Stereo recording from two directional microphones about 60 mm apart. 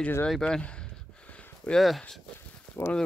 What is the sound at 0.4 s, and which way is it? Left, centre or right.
Speech, centre.